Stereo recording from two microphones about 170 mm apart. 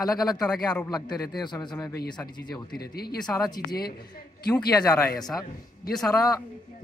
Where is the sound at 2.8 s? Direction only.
65° left (ahead or behind).